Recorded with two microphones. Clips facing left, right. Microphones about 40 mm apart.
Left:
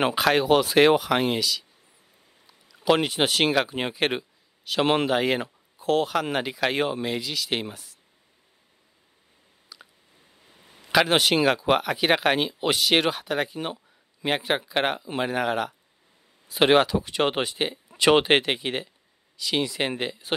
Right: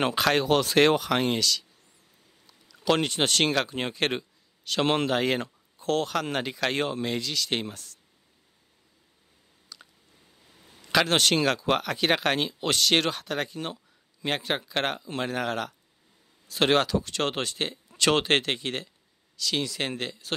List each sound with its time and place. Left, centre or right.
0.0 s speech: centre
9.7 s a sound: centre
10.4 s speech: centre